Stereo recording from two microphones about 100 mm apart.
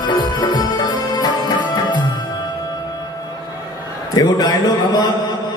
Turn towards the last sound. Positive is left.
turn(degrees=45)  # may be behind; listen again after turning